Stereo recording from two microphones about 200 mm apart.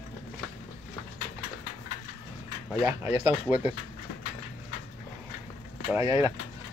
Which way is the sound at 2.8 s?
10° right (ahead or behind).